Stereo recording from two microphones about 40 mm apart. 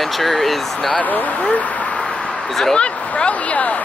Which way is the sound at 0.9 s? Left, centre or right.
Left.